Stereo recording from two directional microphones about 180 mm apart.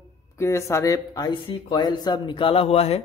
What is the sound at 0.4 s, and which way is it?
Speech, 15° left (ahead or behind).